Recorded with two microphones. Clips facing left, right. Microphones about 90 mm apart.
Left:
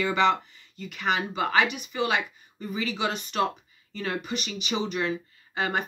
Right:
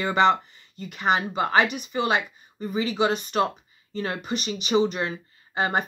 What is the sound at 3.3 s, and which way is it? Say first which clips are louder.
Speech: right 3 dB; 35° right (ahead or behind).